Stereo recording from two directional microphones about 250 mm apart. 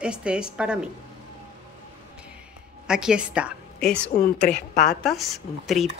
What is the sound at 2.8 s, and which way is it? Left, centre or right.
A woman's voice, centre.